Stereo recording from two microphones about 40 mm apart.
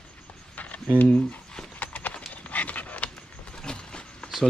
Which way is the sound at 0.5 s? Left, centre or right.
Left.